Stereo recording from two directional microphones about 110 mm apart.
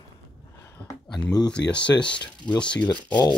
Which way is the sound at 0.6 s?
30° left (ahead or behind).